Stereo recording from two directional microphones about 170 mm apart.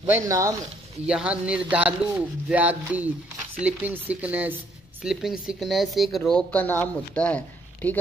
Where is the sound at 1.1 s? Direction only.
5° right (ahead or behind).